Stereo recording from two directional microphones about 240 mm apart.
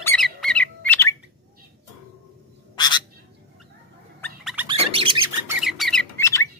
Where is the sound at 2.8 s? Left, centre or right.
Centre.